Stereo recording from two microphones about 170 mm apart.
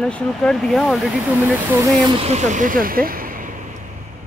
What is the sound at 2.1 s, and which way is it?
Speech, 40° right (ahead or behind).